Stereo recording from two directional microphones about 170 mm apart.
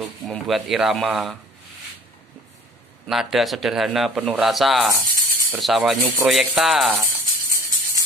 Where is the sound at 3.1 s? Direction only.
Centre (ahead or behind).